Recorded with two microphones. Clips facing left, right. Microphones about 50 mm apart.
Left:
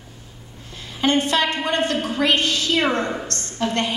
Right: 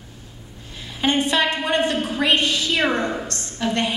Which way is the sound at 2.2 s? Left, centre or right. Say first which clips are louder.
Even; right.